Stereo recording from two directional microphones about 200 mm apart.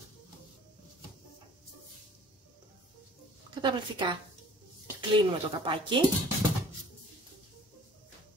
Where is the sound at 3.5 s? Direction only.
25° right (ahead or behind).